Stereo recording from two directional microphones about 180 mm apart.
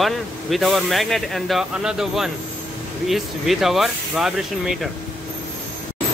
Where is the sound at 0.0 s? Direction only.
Centre (ahead or behind).